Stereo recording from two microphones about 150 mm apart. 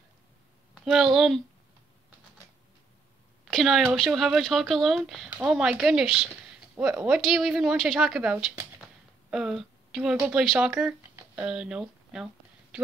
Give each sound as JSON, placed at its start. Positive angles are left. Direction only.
{"t": 0.7, "sound": "speech", "side_deg": 0}
{"t": 3.4, "sound": "speech", "side_deg": 0}
{"t": 8.8, "sound": "a sound", "side_deg": -5}
{"t": 10.1, "sound": "speech", "side_deg": -10}